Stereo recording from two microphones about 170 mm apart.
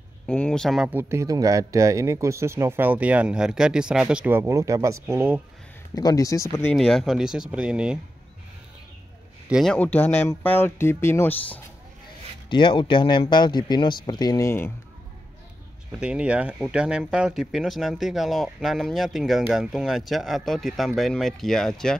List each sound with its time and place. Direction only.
0.3 s speech: 5° left (ahead or behind)
0.8 s speech: 15° right (ahead or behind)
5.9 s speech: 20° left (ahead or behind)
6.7 s speech: 5° left (ahead or behind)
9.5 s speech: centre (ahead or behind)
9.8 s speech: 10° left (ahead or behind)
12.4 s speech: 30° left (ahead or behind)
16.0 s speech: 5° right (ahead or behind)